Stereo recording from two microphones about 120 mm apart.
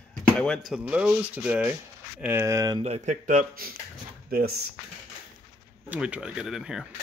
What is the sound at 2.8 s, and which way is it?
Speech, 75° right (ahead or behind).